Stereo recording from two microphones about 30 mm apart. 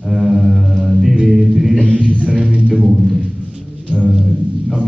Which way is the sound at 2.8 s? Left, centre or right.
Centre.